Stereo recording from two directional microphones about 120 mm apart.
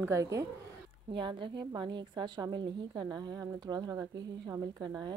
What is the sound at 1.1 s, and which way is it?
A woman's voice, 45° right (ahead or behind).